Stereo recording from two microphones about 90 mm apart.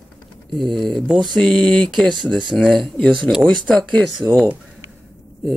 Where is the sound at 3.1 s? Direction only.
5° right (ahead or behind).